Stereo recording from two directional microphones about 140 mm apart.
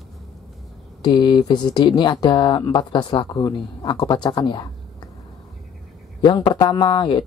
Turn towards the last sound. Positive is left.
turn(degrees=35)  # may be behind; listen again after turning